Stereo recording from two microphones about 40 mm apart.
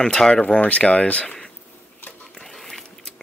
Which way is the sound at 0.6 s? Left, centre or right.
Left.